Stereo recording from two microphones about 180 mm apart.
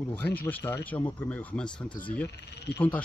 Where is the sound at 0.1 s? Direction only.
10° left (ahead or behind).